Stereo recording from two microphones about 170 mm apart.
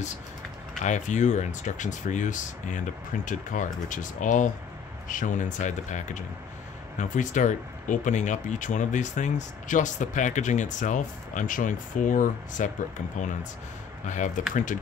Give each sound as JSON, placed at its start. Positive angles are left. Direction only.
{"t": 0.8, "sound": "speech", "side_deg": 45}